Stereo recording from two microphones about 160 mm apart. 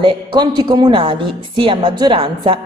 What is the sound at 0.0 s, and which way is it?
A woman's voice, 30° right (ahead or behind).